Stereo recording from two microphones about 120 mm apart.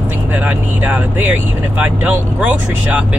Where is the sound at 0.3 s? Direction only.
15° right (ahead or behind).